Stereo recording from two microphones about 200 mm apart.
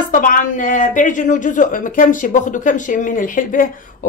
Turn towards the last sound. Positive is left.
turn(degrees=40)  # may be behind; listen again after turning